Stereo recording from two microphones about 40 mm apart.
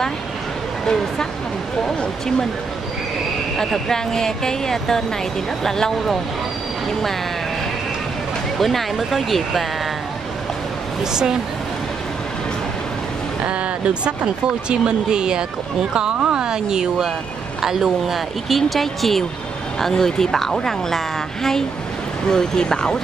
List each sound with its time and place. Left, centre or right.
3.5 s speech: centre
8.5 s speech: centre
11.1 s speech: centre
13.5 s speech: right; by 22.9 s centre